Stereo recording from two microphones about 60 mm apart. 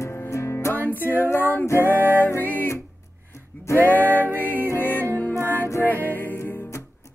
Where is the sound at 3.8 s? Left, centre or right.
Left.